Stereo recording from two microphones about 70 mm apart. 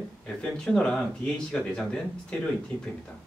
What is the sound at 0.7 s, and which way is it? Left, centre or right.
Speech, centre.